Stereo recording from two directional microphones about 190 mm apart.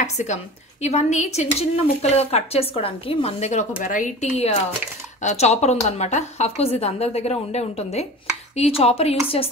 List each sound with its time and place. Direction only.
0.0 s a woman's voice: 35° left (ahead or behind)